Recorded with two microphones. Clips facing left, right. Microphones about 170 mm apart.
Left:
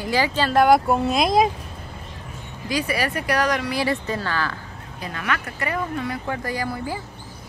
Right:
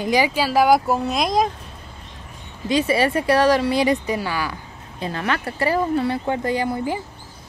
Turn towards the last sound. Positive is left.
turn(degrees=-20)  # may be behind; listen again after turning